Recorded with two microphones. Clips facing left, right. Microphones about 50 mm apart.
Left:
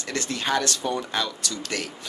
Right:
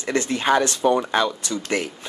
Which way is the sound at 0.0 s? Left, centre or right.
Right.